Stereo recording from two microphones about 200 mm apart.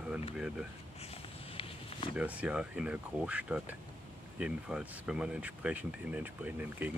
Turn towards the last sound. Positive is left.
turn(degrees=-10)  # may be behind; listen again after turning